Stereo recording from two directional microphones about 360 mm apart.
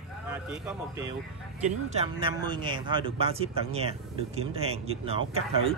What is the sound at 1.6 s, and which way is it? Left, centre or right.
Speech, centre.